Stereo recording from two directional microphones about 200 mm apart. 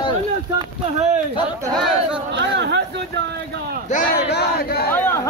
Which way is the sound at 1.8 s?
Centre (ahead or behind).